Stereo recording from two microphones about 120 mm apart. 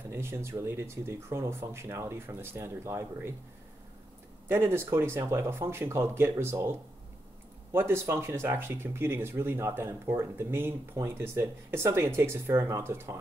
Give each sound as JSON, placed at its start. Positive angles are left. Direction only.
{"t": 0.1, "sound": "speech", "side_deg": -20}
{"t": 4.5, "sound": "speech", "side_deg": -20}